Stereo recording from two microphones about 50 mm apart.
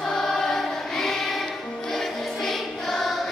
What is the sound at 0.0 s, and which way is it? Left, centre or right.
Choir, centre.